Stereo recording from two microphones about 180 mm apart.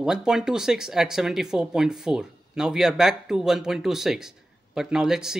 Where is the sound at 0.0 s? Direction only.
5° right (ahead or behind).